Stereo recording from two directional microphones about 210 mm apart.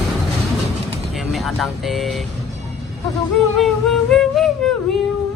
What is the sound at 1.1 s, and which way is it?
Vehicle, centre (ahead or behind).